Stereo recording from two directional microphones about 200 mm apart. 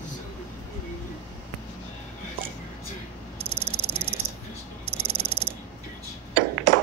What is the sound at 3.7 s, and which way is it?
Frog, 30° right (ahead or behind).